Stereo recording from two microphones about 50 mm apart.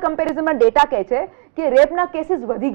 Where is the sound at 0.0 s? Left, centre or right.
Centre.